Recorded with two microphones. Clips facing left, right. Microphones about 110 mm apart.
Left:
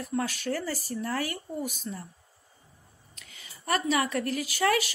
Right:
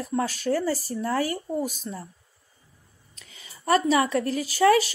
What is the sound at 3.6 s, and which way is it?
Speech, 30° right (ahead or behind).